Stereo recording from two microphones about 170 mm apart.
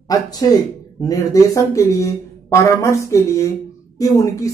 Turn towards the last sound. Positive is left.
turn(degrees=20)  # may be behind; listen again after turning